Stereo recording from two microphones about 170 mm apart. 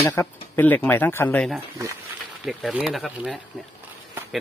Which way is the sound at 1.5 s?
15° right (ahead or behind).